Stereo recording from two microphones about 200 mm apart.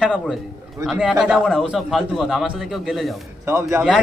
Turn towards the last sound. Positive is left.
turn(degrees=-15)  # may be behind; listen again after turning